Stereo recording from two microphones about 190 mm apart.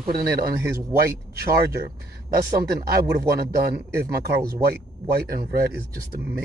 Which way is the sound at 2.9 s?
55° right (ahead or behind).